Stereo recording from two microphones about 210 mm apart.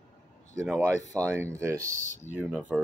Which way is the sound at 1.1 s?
15° right (ahead or behind).